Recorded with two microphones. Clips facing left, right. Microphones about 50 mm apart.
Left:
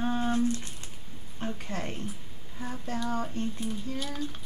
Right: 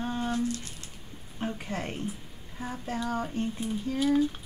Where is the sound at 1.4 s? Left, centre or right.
Centre.